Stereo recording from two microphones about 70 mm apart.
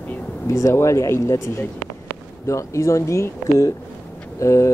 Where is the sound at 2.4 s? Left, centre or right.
Left.